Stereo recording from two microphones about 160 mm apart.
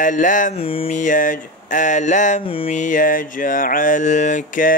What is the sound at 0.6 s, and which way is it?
Music, 35° left (ahead or behind).